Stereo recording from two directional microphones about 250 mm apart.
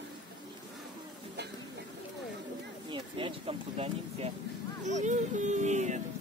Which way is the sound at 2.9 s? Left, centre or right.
Right.